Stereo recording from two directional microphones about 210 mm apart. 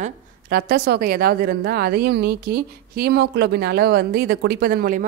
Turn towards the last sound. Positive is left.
turn(degrees=-45)  # may be behind; listen again after turning